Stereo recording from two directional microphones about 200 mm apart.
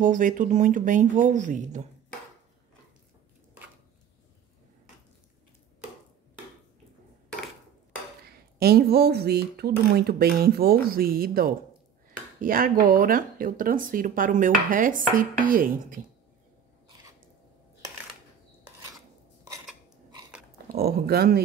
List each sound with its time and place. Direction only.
0.0 s speech: 40° right (ahead or behind)
8.5 s speech: 50° right (ahead or behind)
20.5 s speech: 50° right (ahead or behind)